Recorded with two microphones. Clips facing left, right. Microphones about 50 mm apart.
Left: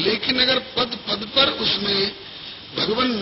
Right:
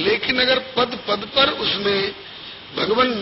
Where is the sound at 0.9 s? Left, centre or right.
Right.